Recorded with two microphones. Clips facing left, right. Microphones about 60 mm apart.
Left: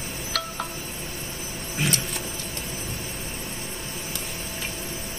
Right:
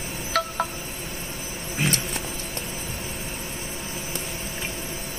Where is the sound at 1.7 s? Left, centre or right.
Right.